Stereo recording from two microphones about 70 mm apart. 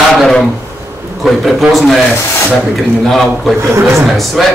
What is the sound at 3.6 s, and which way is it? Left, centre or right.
Speech, right.